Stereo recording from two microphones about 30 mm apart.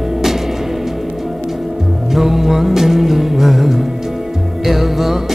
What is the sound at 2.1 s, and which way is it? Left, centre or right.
Music, centre.